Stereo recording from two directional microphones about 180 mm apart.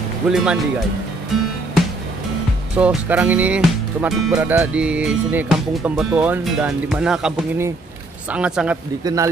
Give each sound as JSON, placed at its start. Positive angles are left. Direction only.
{"t": 0.3, "sound": "speech", "side_deg": -5}
{"t": 2.7, "sound": "speech", "side_deg": -5}
{"t": 9.0, "sound": "speech", "side_deg": -20}